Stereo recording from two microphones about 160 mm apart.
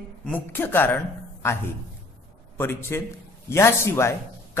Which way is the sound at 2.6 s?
15° left (ahead or behind).